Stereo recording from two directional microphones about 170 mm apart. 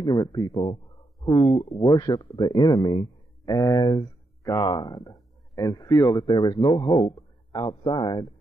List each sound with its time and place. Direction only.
0.0 s speech: 25° left (ahead or behind)